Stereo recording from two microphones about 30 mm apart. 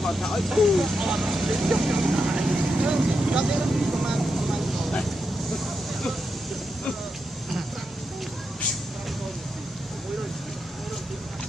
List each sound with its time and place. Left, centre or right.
0.4 s speech: centre
4.1 s vehicle: centre